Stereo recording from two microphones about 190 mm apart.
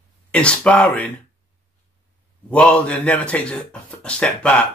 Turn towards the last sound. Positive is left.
turn(degrees=5)  # may be behind; listen again after turning